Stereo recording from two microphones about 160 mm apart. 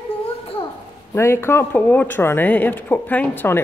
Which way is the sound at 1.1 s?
15° left (ahead or behind).